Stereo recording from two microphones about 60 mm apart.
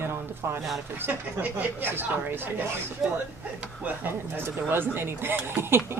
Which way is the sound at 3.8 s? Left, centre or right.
Right.